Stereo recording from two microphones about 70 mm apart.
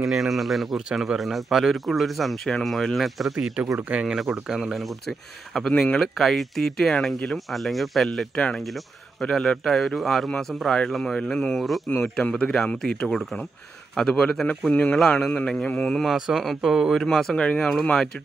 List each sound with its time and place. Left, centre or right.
0.0 s speech: centre
3.5 s speech: centre
5.7 s a man's voice: centre
5.9 s a man's voice: centre
11.9 s speech: left
12.2 s a man's voice: centre
16.2 s speech: centre
17.0 s a man's voice: centre